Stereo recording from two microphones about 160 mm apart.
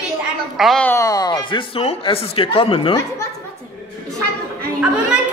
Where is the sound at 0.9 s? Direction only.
20° left (ahead or behind); by 2.9 s 35° left (ahead or behind).